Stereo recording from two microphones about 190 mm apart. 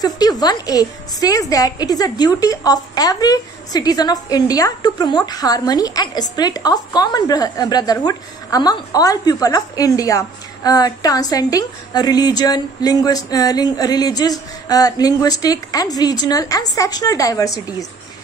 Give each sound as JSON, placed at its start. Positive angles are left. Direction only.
{"t": 0.0, "sound": "a woman's voice", "side_deg": 20}